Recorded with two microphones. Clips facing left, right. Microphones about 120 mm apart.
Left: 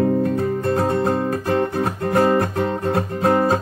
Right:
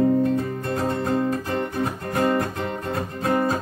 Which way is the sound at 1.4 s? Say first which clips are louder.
Left 5 dB; 70° left (ahead or behind).